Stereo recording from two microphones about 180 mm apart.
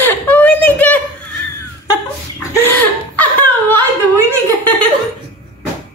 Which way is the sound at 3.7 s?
10° left (ahead or behind).